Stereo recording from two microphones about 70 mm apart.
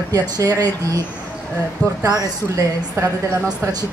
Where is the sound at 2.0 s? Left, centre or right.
Right.